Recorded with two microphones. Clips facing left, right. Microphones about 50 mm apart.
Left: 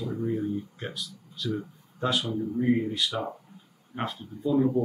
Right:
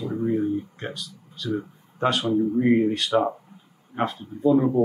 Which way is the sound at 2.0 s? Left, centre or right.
Right.